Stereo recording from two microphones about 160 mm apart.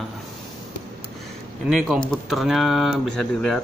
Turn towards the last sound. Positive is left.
turn(degrees=5)  # may be behind; listen again after turning